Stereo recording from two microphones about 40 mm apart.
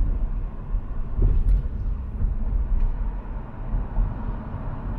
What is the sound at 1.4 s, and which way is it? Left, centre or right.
Vehicle, left.